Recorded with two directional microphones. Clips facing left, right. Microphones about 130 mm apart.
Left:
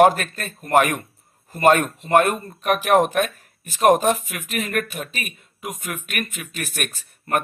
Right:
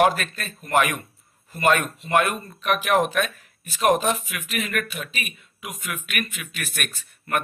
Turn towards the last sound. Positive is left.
turn(degrees=40)  # may be behind; listen again after turning